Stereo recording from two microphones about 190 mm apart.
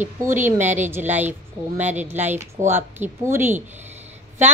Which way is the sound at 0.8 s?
10° right (ahead or behind).